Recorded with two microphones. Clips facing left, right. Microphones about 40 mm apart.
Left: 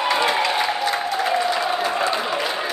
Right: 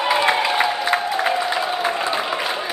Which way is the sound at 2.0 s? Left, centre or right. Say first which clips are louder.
Even; centre.